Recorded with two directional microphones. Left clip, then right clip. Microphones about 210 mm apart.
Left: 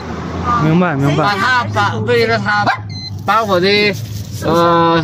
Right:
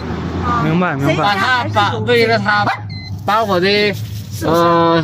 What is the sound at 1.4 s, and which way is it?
Speech, 15° right (ahead or behind).